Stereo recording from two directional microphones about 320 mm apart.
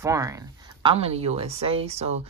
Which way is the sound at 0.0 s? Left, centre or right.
Centre.